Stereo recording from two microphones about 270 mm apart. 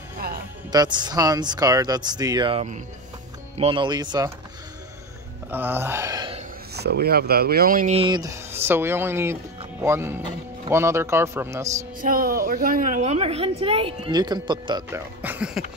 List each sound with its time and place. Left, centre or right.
0.7 s speech: centre
5.5 s speech: centre
6.7 s a woman's voice: right; by 11.7 s centre
12.0 s a woman's voice: right; by 15.6 s centre